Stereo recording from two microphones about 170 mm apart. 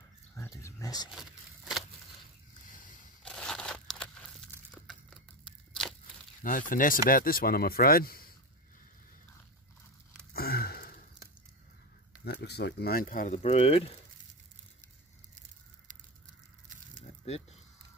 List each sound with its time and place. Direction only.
0.4 s a sound: 15° left (ahead or behind)
1.1 s vehicle: centre (ahead or behind)
2.7 s vehicle: 50° left (ahead or behind)
3.3 s crumpling: 5° left (ahead or behind)
6.4 s speech: 50° left (ahead or behind)
10.3 s sniff: 65° left (ahead or behind)
12.3 s speech: 75° left (ahead or behind); by 13.8 s 35° left (ahead or behind)